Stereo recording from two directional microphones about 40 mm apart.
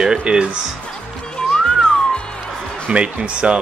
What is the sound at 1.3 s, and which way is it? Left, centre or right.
Music, centre.